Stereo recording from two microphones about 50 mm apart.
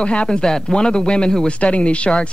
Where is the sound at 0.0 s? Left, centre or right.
Left.